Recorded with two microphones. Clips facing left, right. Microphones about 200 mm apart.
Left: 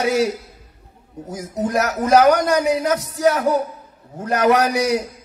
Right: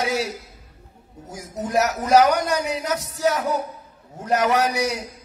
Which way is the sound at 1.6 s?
60° left (ahead or behind).